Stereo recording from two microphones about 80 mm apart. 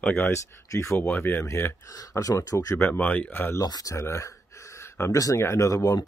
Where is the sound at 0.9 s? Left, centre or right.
Left.